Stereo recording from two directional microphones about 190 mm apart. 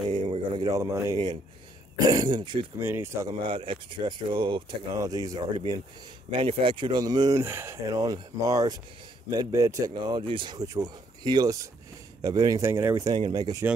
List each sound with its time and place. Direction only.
0.1 s a sound: 25° right (ahead or behind)
2.0 s speech: 20° right (ahead or behind)
3.4 s speech: 30° right (ahead or behind)